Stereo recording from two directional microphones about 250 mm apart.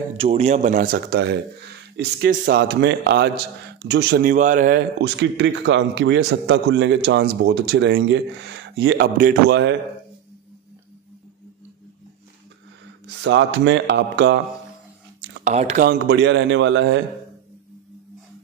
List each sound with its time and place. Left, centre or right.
0.2 s a man's voice: right
13.0 s a man's voice: right
15.4 s a man's voice: right